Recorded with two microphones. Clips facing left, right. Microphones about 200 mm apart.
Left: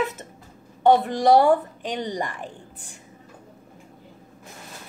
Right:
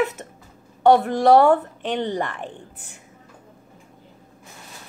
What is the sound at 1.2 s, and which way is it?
Speech, 15° left (ahead or behind).